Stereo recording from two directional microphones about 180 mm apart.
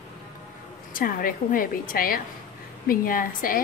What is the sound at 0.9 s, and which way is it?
A woman's voice, 50° left (ahead or behind).